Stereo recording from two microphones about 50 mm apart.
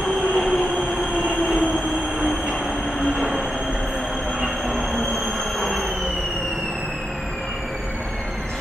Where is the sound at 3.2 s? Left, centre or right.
Centre.